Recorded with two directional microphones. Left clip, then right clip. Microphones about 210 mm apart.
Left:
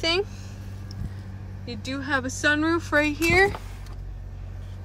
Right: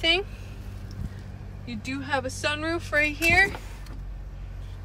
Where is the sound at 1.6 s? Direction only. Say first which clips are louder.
Left 2 dB; 10° left (ahead or behind).